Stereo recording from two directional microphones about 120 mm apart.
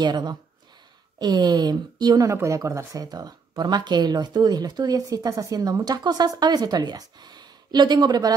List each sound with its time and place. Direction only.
0.0 s speech: 35° right (ahead or behind)